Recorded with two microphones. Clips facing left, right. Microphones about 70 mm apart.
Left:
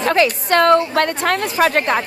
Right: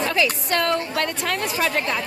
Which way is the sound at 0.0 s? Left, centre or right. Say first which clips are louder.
Left 6 dB; left.